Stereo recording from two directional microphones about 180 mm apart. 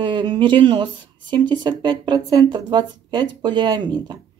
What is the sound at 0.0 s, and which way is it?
Speech, 25° right (ahead or behind).